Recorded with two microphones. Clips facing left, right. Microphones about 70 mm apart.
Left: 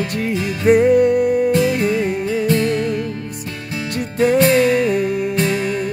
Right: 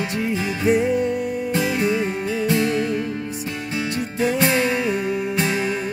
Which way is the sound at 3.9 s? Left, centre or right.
Left.